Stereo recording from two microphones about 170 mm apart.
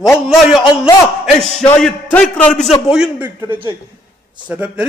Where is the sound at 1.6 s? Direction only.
5° left (ahead or behind).